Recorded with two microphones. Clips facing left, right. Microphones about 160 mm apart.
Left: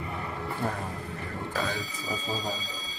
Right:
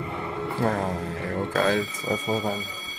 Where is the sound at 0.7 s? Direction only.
85° right; by 2.6 s 60° right (ahead or behind).